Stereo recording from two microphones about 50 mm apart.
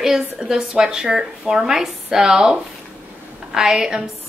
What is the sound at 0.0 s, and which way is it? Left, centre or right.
A woman's voice, centre.